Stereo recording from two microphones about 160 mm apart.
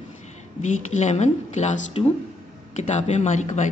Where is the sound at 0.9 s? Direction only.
45° left (ahead or behind).